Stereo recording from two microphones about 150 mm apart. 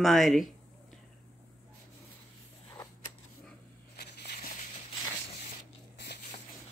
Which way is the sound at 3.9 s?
85° left.